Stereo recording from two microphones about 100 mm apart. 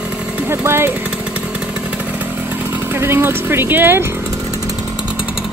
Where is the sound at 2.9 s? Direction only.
25° right (ahead or behind).